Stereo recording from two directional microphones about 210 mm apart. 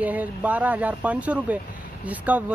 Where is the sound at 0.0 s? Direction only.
5° right (ahead or behind).